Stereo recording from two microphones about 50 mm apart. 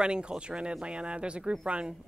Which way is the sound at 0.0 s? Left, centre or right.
Centre.